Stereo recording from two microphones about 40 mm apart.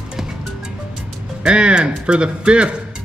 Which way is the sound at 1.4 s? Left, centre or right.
Right.